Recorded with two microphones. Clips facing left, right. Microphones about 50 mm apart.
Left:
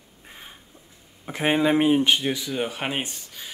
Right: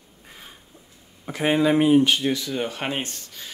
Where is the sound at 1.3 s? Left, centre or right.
Left.